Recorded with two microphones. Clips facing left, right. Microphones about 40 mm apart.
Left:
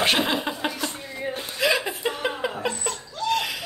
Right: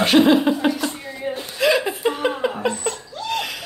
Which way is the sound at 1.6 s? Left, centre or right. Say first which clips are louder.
Right 5 dB; centre.